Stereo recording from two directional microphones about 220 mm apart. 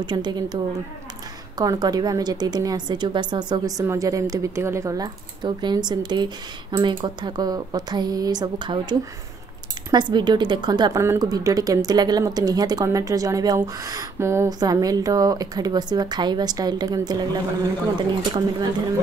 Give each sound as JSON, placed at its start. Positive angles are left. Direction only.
{"t": 0.0, "sound": "a woman's voice", "side_deg": -20}
{"t": 1.6, "sound": "a woman's voice", "side_deg": -15}